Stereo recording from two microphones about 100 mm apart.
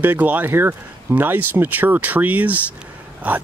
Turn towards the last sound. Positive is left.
turn(degrees=-15)  # may be behind; listen again after turning